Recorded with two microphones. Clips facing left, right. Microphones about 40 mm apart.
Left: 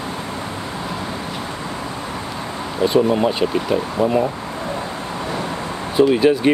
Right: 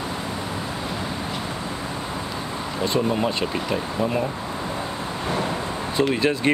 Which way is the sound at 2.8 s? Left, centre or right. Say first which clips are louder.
Left 7 dB; centre.